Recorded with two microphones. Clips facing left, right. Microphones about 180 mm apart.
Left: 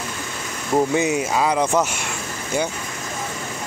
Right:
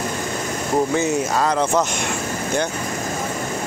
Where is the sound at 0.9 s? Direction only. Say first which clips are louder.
Even; 10° left (ahead or behind).